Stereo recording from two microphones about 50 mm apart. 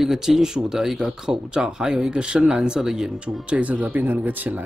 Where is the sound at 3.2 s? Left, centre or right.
Right.